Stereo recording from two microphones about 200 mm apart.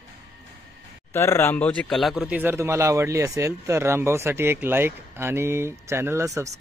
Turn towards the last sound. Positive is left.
turn(degrees=-15)  # may be behind; listen again after turning